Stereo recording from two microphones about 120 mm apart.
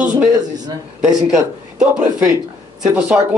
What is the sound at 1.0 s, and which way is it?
Speech, 5° right (ahead or behind).